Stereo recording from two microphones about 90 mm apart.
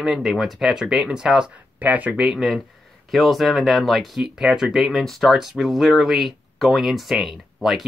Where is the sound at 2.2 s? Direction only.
5° right (ahead or behind).